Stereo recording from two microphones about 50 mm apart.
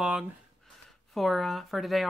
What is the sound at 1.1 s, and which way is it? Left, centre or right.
Speech, centre.